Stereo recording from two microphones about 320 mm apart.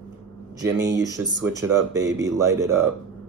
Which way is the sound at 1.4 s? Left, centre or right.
Centre.